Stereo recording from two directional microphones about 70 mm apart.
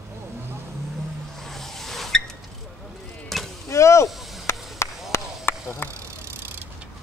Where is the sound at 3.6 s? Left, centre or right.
Left.